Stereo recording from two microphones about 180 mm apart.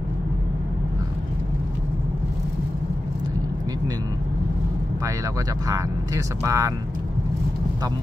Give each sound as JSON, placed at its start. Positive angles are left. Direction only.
{"t": 5.7, "sound": "speech", "side_deg": -15}